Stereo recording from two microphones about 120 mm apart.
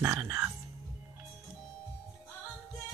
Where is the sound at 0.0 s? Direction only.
15° right (ahead or behind).